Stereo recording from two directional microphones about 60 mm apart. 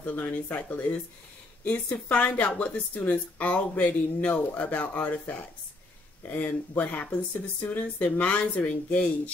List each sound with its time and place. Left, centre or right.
0.0 s speech: left
6.3 s speech: left
8.0 s speech: left